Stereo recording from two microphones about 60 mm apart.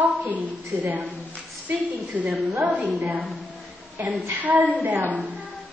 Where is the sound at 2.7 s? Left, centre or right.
Right.